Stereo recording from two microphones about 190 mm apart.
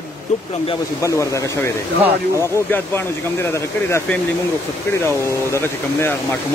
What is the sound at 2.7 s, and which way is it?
Speech, 10° left (ahead or behind).